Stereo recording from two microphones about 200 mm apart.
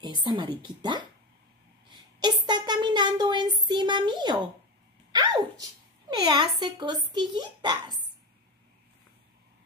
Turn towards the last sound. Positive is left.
turn(degrees=-20)  # may be behind; listen again after turning